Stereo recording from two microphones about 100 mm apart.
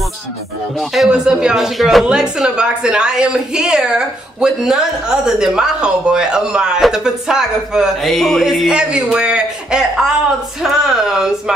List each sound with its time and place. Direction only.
0.7 s speech: centre (ahead or behind)